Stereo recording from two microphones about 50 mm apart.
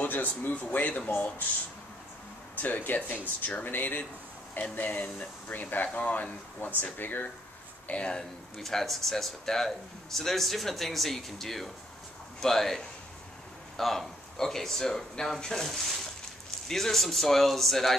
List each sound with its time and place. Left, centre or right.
0.0 s speech: left
2.5 s speech: left
7.9 s speech: centre
8.5 s speech: centre